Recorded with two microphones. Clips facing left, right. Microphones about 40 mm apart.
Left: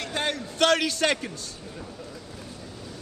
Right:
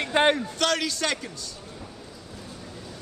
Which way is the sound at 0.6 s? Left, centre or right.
Left.